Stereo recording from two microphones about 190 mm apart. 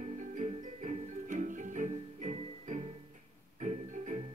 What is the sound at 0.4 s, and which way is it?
Music, 40° right (ahead or behind).